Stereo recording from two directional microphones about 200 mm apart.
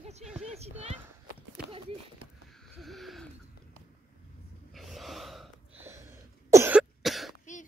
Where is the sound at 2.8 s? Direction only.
Centre (ahead or behind).